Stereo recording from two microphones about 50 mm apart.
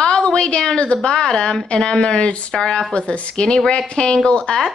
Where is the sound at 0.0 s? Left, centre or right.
Centre.